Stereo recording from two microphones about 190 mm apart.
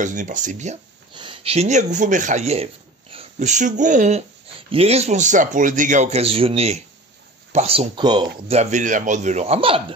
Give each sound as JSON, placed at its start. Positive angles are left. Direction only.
{"t": 0.0, "sound": "speech", "side_deg": -40}
{"t": 1.1, "sound": "speech", "side_deg": -25}